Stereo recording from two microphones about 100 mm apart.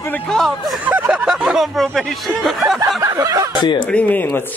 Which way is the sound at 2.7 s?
35° right (ahead or behind).